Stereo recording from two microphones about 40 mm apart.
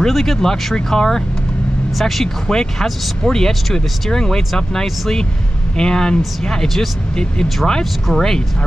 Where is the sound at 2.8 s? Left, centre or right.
Centre.